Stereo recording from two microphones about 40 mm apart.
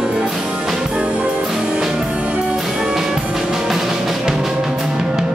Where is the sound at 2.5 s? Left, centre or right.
Centre.